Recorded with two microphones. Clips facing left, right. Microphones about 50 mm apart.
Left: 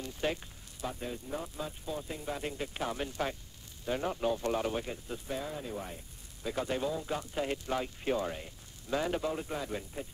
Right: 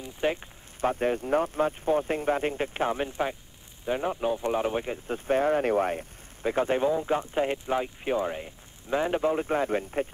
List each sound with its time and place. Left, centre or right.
0.0 s speech: right
0.7 s speech: right
5.0 s speech: right
6.4 s speech: right